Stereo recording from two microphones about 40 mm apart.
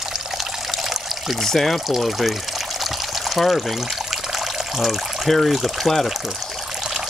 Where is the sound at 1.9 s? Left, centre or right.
Centre.